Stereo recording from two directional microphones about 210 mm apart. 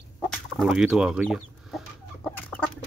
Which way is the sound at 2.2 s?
5° left (ahead or behind).